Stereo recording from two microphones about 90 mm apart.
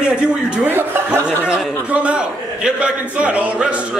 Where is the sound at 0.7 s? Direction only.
25° right (ahead or behind).